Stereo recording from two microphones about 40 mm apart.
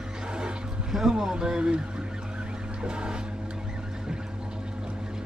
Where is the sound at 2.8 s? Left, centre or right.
Right.